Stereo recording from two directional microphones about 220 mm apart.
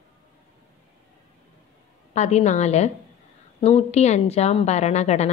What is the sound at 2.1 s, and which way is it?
A woman's voice, 30° left (ahead or behind).